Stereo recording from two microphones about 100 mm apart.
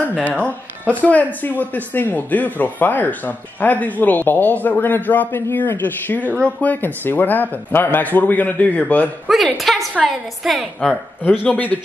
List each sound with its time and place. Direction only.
0.8 s speech: 15° left (ahead or behind)
9.3 s a woman's voice: centre (ahead or behind); by 11.8 s 15° left (ahead or behind)